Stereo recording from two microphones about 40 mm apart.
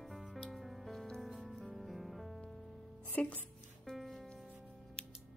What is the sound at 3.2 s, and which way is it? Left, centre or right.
Speech, left.